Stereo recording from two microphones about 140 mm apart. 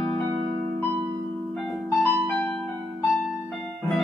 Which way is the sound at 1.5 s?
5° left (ahead or behind).